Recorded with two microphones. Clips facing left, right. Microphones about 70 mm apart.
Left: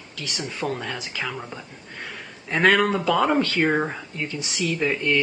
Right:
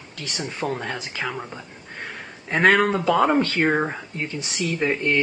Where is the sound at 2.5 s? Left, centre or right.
Right.